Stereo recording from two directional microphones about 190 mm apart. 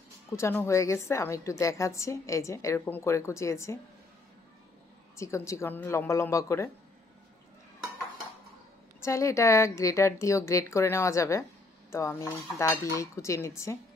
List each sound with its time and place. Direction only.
0.3 s a woman's voice: 15° left (ahead or behind)
5.1 s a woman's voice: 15° left (ahead or behind)
9.0 s a woman's voice: 15° left (ahead or behind)